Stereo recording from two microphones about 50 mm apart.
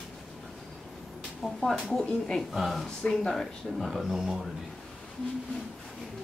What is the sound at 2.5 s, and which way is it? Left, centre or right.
Speech, centre.